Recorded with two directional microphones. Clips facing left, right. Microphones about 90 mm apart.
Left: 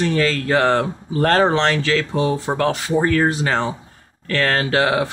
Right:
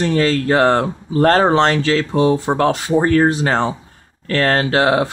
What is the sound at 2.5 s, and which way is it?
Speech, 35° right (ahead or behind).